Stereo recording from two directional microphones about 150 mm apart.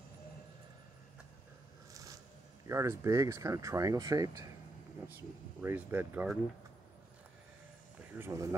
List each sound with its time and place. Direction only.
2.6 s speech: 20° right (ahead or behind)
5.6 s speech: 15° right (ahead or behind)
8.1 s speech: 15° right (ahead or behind)